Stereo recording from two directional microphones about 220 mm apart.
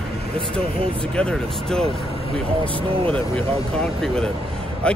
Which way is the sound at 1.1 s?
5° left (ahead or behind).